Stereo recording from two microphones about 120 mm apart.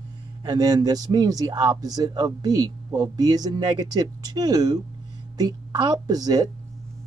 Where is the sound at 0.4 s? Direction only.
30° right (ahead or behind).